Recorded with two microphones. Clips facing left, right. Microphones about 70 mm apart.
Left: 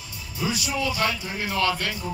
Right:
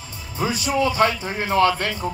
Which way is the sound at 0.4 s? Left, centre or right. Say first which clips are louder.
Right 6 dB; right.